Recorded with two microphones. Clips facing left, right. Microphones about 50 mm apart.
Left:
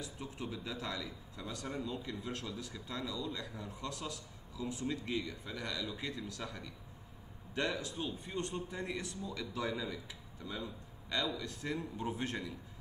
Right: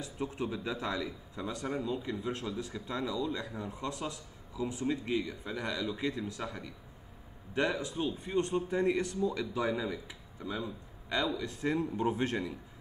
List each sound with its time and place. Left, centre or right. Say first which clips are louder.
0.0 s speech: right 7 dB; right
11.6 s speech: right 9 dB; right